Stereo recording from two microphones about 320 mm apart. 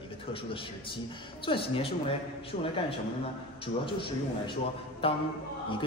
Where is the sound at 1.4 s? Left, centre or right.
Centre.